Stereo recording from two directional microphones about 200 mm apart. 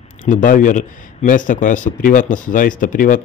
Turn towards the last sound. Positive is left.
turn(degrees=40)  # may be behind; listen again after turning